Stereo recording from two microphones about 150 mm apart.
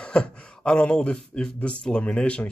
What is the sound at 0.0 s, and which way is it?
Speech, 5° left (ahead or behind).